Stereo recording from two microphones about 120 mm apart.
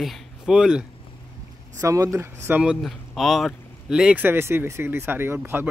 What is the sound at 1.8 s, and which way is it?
Speech, 25° right (ahead or behind).